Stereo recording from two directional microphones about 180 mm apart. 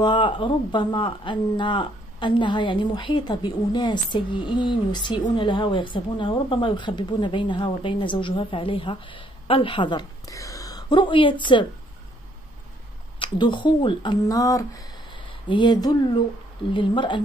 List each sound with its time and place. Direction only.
0.0 s a woman's voice: 25° left (ahead or behind)
13.2 s a woman's voice: 25° left (ahead or behind)